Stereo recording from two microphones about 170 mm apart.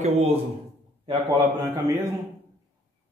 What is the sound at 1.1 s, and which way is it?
Speech, 20° right (ahead or behind).